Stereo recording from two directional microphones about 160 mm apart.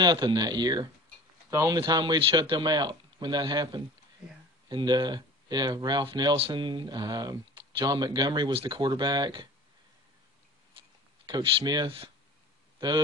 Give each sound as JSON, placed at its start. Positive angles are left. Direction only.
{"t": 0.0, "sound": "speech", "side_deg": -25}
{"t": 11.2, "sound": "speech", "side_deg": -25}